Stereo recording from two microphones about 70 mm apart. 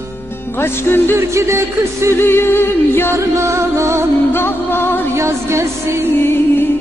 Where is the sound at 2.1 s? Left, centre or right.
Left.